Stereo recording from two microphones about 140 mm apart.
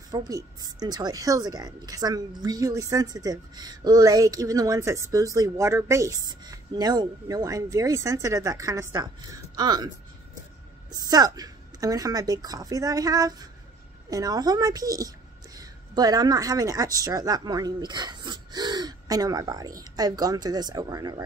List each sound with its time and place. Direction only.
0.1 s speech: 25° right (ahead or behind)
10.9 s a woman's voice: 30° right (ahead or behind)